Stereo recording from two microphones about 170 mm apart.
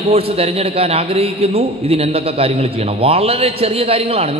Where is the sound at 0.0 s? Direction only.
35° right (ahead or behind).